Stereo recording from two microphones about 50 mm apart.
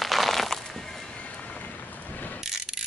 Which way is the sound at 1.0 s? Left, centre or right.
Left.